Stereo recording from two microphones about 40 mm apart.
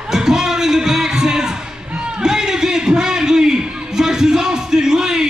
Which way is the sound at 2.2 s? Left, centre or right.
Centre.